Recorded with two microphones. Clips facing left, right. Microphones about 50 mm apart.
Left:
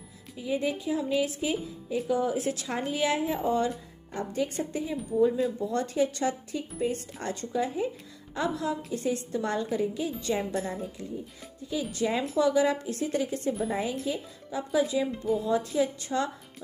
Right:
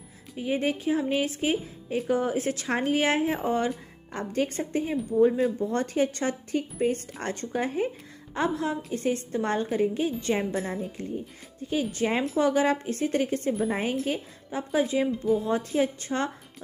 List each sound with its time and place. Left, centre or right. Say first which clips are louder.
0.4 s speech: right 2 dB; right
10.5 s a woman's voice: right 1 dB; centre
11.0 s speech: right 3 dB; right